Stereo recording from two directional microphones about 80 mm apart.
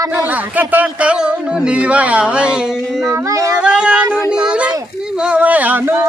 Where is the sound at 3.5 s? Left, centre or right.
Centre.